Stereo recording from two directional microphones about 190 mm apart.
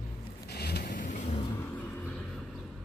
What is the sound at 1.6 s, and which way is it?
Vehicle, 5° left (ahead or behind).